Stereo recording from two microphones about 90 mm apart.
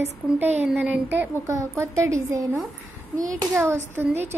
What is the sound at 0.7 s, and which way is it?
Speech, 20° right (ahead or behind).